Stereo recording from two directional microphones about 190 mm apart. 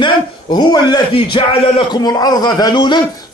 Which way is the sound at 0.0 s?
20° left (ahead or behind).